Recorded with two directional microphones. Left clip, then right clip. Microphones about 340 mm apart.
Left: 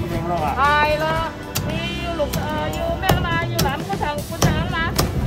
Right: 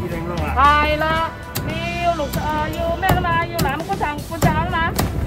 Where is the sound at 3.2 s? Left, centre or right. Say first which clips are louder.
Right 2 dB; centre.